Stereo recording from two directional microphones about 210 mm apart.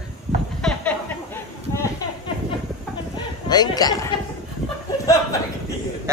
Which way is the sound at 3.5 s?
20° left (ahead or behind).